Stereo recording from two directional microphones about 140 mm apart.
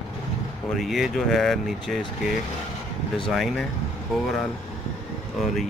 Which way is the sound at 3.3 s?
Centre (ahead or behind).